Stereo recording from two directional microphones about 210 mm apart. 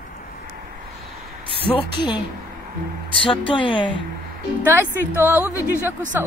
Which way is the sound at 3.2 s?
25° left (ahead or behind).